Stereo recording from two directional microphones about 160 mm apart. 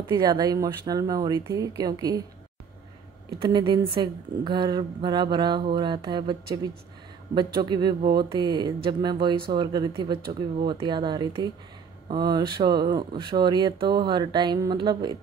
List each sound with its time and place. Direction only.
0.1 s speech: 25° right (ahead or behind)
3.3 s speech: 30° right (ahead or behind)